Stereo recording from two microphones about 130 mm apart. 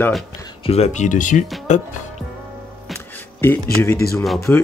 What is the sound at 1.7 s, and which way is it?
Speech, 65° left (ahead or behind).